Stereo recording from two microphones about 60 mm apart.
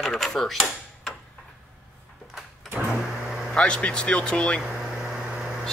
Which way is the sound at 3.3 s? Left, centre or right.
Centre.